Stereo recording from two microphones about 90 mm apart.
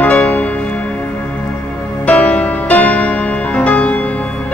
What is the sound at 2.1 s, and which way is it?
Music, 15° left (ahead or behind).